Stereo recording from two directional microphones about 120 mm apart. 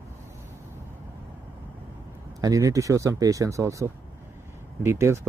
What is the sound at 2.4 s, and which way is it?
Speech, 30° right (ahead or behind).